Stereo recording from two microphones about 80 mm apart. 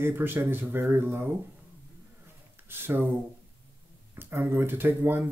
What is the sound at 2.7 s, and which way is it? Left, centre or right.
Speech, right.